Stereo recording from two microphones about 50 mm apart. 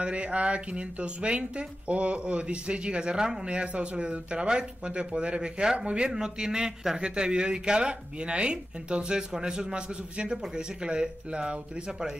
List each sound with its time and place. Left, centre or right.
0.0 s speech: right